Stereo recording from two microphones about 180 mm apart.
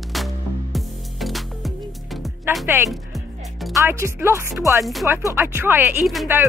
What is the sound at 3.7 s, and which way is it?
Speech, 15° right (ahead or behind).